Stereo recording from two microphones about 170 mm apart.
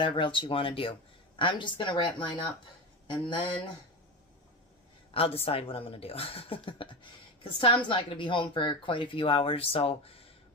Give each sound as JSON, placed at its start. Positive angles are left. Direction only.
{"t": 0.0, "sound": "speech", "side_deg": 30}
{"t": 3.1, "sound": "speech", "side_deg": 25}
{"t": 5.1, "sound": "speech", "side_deg": 35}